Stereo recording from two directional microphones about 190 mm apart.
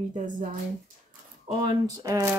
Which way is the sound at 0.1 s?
40° right (ahead or behind).